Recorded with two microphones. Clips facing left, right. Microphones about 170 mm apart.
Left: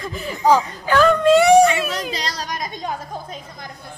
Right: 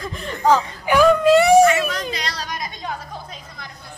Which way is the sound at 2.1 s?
40° left (ahead or behind).